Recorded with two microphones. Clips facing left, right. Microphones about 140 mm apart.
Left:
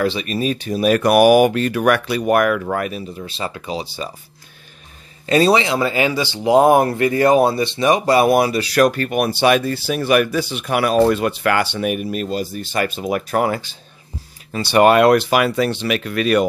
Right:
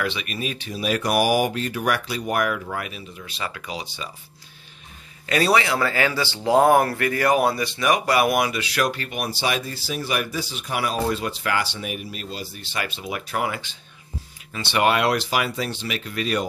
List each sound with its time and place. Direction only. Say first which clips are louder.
0.0 s speech: left 8 dB; 35° left (ahead or behind)
3.3 s speech: left 3 dB; 30° left (ahead or behind)
5.2 s speech: left 6 dB; 25° left (ahead or behind); by 16.4 s 65° left (ahead or behind)